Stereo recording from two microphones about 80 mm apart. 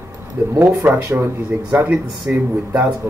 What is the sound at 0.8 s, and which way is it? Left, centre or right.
Speech, right.